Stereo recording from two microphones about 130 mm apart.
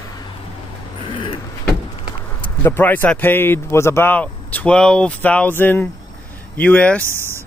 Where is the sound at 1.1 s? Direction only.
40° left (ahead or behind).